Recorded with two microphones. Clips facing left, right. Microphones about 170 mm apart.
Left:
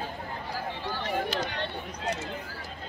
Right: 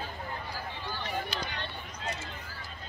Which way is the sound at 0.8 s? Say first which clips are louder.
Left 5 dB; 90° left.